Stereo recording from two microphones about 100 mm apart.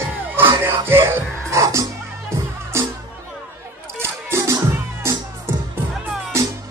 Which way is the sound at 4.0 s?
25° right (ahead or behind).